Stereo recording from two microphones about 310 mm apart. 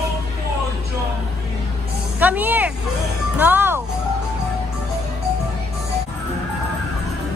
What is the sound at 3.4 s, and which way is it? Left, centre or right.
Music, centre.